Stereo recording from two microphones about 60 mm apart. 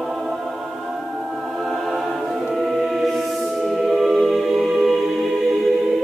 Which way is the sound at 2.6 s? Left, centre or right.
Centre.